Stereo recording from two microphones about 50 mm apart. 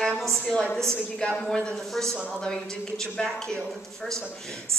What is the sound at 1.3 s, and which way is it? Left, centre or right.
Speech, centre.